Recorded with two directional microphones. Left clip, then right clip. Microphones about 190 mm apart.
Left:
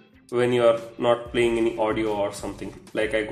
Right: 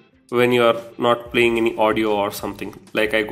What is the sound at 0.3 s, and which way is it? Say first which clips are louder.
Speech: right 4 dB; 20° right (ahead or behind).